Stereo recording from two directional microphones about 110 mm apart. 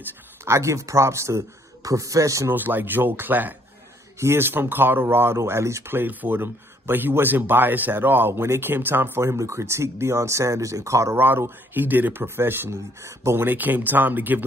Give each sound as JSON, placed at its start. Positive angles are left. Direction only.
{"t": 0.0, "sound": "speech", "side_deg": -25}
{"t": 2.5, "sound": "speech", "side_deg": -15}